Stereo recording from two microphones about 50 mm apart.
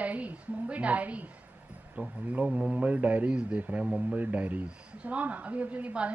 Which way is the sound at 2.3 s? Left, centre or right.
Centre.